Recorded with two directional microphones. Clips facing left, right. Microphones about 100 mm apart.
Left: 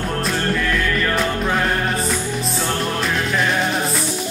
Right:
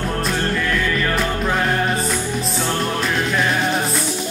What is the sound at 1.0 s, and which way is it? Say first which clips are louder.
Music: even; centre (ahead or behind).